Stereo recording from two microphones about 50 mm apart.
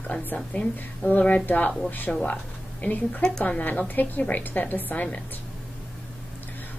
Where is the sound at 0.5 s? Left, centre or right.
Left.